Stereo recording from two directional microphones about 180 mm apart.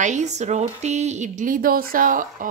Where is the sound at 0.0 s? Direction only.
40° right (ahead or behind).